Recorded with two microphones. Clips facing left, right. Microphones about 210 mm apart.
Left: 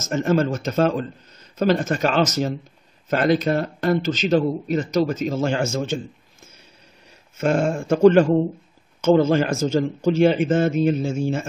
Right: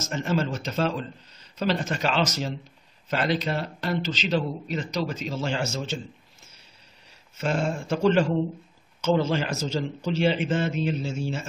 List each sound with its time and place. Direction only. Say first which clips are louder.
0.0 s speech: left 7 dB; 45° left (ahead or behind)
7.3 s speech: left 6 dB; 50° left (ahead or behind)